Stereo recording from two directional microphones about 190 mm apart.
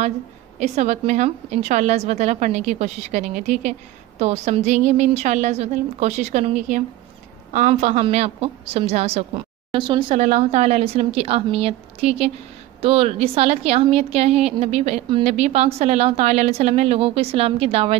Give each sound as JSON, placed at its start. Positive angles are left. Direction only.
{"t": 0.6, "sound": "a woman's voice", "side_deg": -40}
{"t": 10.2, "sound": "a woman's voice", "side_deg": -40}